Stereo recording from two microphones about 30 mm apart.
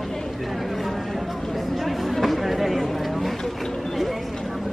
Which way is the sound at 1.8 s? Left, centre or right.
Centre.